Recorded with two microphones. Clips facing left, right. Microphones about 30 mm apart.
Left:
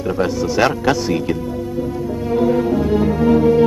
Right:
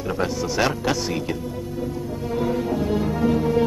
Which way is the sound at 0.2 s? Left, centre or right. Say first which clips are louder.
Left 6 dB; centre.